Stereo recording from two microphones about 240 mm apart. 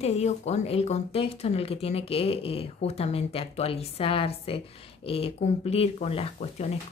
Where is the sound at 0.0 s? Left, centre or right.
Left.